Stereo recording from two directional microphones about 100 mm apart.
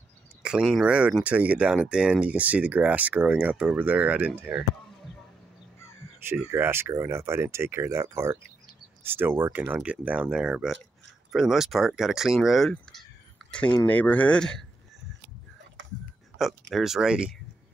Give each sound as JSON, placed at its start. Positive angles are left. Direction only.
{"t": 0.4, "sound": "speech", "side_deg": -5}
{"t": 6.2, "sound": "speech", "side_deg": -20}
{"t": 16.3, "sound": "speech", "side_deg": 0}